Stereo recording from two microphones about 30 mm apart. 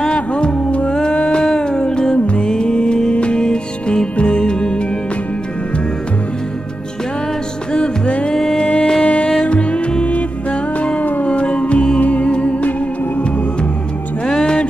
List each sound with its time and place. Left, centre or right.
0.1 s music: left
0.9 s a sound: left
1.6 s music: left
2.1 s music: left
2.4 s music: left
8.4 s music: centre
9.0 s music: left
11.0 s music: left
11.2 s music: left